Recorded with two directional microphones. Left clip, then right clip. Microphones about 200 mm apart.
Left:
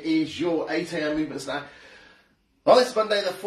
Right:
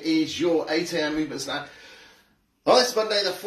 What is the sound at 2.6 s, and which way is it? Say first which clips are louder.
Speech: left 1 dB; 20° left (ahead or behind).